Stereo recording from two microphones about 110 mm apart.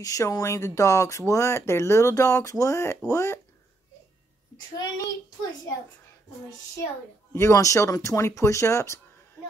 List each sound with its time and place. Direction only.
0.0 s speech: 35° left (ahead or behind)
4.7 s a child's voice: 35° left (ahead or behind)
7.3 s speech: 25° left (ahead or behind)